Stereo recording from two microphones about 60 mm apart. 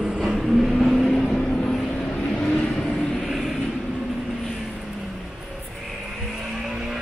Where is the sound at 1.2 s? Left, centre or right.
Left.